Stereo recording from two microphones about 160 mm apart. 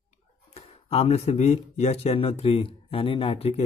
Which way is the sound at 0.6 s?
40° left (ahead or behind).